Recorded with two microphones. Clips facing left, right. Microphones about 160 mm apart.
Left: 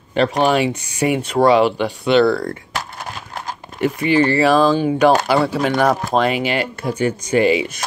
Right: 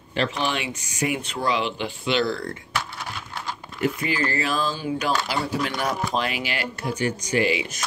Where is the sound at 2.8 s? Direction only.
45° left (ahead or behind).